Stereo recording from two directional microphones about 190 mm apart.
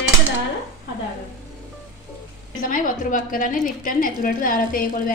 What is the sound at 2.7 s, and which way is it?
A woman's voice, 45° left (ahead or behind).